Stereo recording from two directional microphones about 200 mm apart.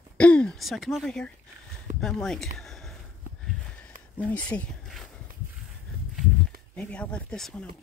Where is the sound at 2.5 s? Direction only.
Centre (ahead or behind).